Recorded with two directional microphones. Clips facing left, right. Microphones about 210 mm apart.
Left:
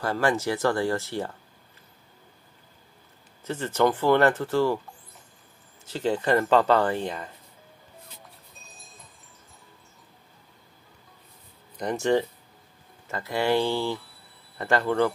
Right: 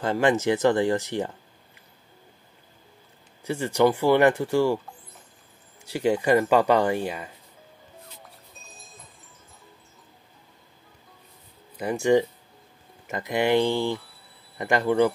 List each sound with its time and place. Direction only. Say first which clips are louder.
0.0 s speech: right 3 dB; 20° right (ahead or behind)
3.4 s speech: right 2 dB; 10° right (ahead or behind)
5.9 s speech: right 3 dB; 10° right (ahead or behind)
8.6 s music: right 2 dB; centre (ahead or behind)
11.7 s speech: right 3 dB; 5° right (ahead or behind)